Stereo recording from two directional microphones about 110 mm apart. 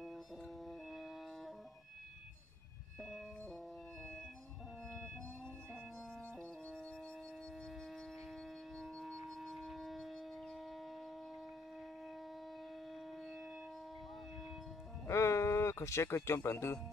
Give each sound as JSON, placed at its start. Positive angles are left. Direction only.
{"t": 8.7, "sound": "music", "side_deg": 0}
{"t": 15.0, "sound": "music", "side_deg": 25}